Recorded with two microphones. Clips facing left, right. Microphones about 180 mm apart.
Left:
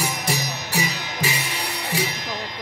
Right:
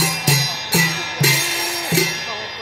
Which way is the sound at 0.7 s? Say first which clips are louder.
Right 5 dB; 75° right (ahead or behind).